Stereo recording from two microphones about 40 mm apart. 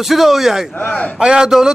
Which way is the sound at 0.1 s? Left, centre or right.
Centre.